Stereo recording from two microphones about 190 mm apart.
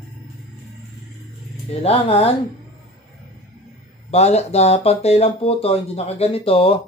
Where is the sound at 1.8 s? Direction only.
30° left (ahead or behind).